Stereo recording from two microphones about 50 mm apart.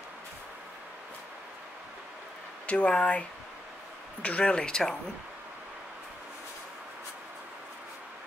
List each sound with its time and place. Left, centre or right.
2.6 s speech: left